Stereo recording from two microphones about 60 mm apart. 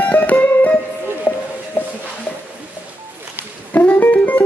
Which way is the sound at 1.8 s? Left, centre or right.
Left.